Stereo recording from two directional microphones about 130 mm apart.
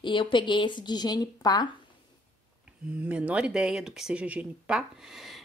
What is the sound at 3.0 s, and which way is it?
Speech, 10° right (ahead or behind).